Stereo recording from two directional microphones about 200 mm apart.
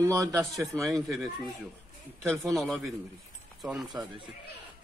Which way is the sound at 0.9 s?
Centre (ahead or behind).